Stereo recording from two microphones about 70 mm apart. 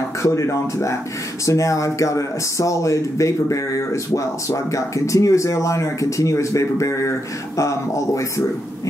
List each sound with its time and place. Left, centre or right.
0.2 s speech: left